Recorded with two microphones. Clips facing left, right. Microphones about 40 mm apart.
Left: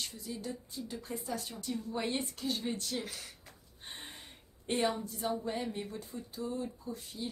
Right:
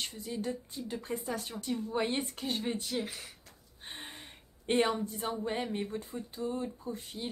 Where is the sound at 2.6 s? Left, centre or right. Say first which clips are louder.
Right 3 dB; right.